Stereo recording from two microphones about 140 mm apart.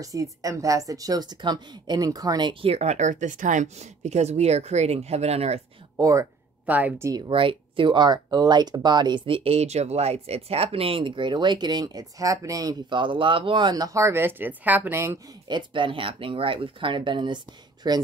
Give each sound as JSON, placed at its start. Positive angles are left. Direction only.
{"t": 0.0, "sound": "a woman's voice", "side_deg": -25}
{"t": 2.7, "sound": "speech", "side_deg": -50}
{"t": 5.9, "sound": "speech", "side_deg": -25}
{"t": 6.6, "sound": "a woman's voice", "side_deg": -10}
{"t": 7.2, "sound": "speech", "side_deg": -40}
{"t": 15.4, "sound": "speech", "side_deg": -35}